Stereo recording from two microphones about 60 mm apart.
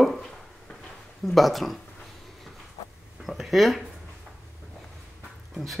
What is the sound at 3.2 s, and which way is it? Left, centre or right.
Speech, centre.